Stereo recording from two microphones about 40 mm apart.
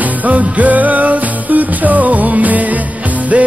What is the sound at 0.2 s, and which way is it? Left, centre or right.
Music, right.